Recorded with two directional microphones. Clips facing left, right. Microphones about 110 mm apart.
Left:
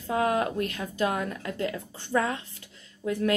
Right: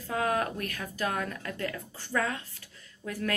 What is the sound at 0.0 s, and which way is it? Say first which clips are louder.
A woman's voice: left 4 dB; 25° left (ahead or behind).